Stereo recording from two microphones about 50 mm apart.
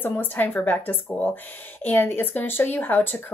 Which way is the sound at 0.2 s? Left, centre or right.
Left.